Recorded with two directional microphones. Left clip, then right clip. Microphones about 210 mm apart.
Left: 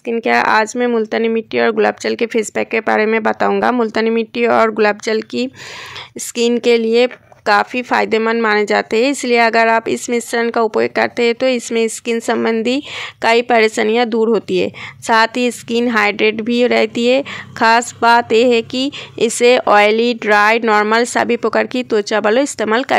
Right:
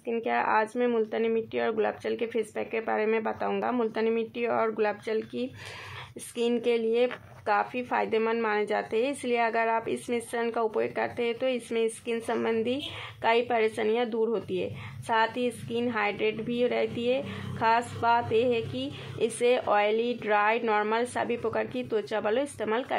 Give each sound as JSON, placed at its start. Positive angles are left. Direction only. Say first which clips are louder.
{"t": 0.0, "sound": "speech", "louder": "left 14 dB", "side_deg": 40}